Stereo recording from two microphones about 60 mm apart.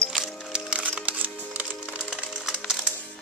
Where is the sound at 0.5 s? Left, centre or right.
Centre.